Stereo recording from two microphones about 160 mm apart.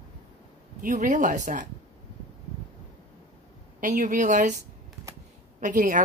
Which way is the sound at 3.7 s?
55° right (ahead or behind).